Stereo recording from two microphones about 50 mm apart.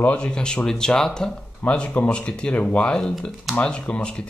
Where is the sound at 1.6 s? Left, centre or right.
Left.